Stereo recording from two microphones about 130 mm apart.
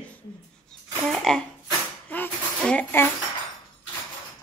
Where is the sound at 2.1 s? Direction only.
10° left (ahead or behind).